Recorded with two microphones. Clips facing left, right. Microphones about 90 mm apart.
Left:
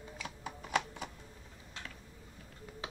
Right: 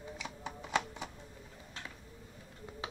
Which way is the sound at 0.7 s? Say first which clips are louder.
Even; 20° right (ahead or behind).